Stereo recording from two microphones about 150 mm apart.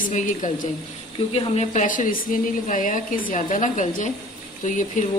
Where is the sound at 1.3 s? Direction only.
45° left (ahead or behind).